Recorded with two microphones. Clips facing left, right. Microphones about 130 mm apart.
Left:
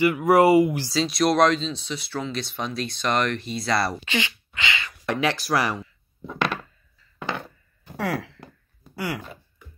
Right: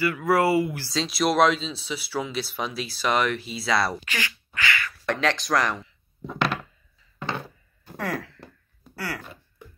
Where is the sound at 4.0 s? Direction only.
20° left (ahead or behind).